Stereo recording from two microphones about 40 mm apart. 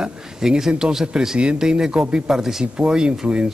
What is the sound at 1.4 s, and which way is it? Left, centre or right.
Speech, right.